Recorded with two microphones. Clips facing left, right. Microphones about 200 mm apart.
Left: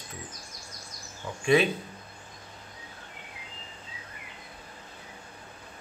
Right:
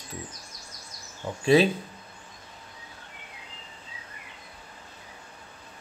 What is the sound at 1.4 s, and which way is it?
Speech, 35° right (ahead or behind).